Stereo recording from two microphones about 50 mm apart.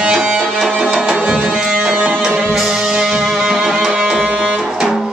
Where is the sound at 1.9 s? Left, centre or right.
Right.